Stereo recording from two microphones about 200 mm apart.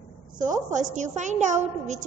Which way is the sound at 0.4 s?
40° right (ahead or behind).